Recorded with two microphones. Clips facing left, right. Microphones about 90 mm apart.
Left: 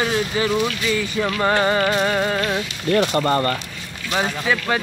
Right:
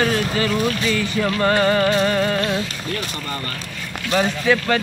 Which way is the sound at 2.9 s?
60° left (ahead or behind).